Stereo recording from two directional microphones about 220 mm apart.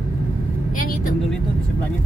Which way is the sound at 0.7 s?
40° left (ahead or behind).